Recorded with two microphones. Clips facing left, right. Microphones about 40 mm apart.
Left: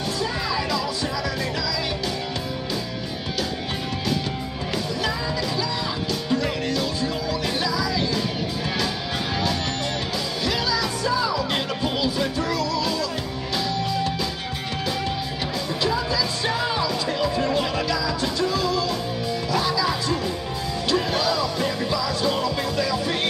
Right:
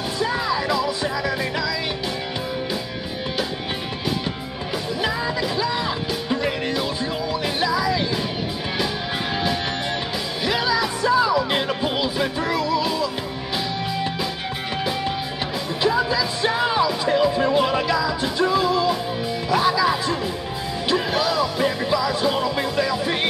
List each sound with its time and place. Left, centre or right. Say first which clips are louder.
0.2 s music: right 6 dB; centre
5.0 s music: right 5 dB; centre
10.4 s music: right 4 dB; centre
15.8 s music: right 4 dB; centre